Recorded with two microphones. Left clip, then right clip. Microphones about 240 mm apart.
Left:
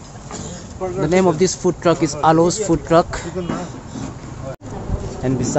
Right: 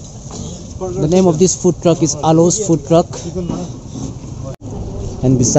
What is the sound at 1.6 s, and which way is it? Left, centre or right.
Speech, centre.